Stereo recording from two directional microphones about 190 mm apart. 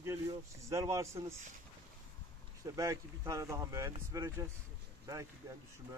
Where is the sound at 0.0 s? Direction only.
15° right (ahead or behind).